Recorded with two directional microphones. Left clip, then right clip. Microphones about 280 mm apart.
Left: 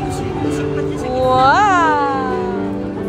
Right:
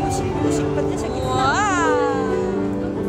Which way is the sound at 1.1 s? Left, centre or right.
Centre.